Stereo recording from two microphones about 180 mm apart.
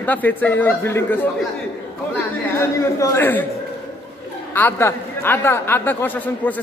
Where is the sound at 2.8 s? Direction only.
15° left (ahead or behind).